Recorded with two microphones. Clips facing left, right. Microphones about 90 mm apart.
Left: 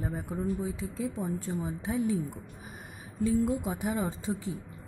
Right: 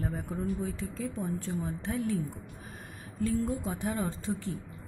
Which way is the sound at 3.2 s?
10° left (ahead or behind).